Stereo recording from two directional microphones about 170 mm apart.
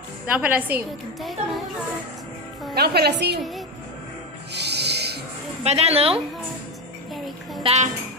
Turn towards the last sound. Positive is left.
turn(degrees=-40)  # may be behind; listen again after turning